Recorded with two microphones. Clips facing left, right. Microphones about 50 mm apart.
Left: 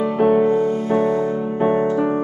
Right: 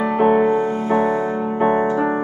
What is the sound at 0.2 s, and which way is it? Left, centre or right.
Music, right.